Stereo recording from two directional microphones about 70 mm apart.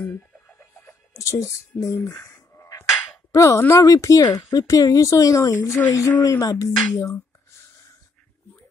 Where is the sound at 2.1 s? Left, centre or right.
Left.